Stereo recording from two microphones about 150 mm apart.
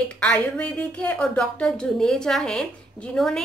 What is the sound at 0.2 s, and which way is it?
Speech, 10° left (ahead or behind).